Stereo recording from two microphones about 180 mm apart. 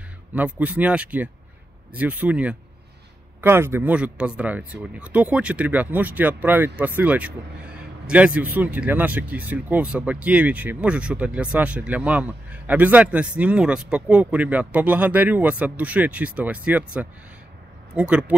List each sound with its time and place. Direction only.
0.3 s speech: 10° right (ahead or behind)